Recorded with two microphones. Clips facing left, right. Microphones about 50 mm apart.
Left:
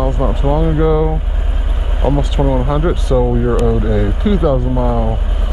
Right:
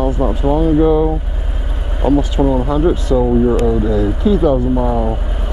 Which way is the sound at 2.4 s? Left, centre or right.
Centre.